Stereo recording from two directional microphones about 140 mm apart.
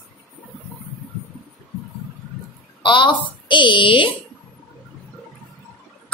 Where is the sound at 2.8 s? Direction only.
35° left (ahead or behind).